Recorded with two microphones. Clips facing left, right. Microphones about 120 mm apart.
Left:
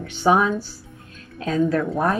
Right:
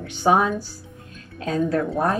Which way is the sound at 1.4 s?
40° right (ahead or behind).